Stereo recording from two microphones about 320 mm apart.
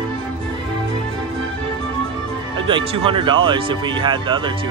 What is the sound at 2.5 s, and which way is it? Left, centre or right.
Speech, centre.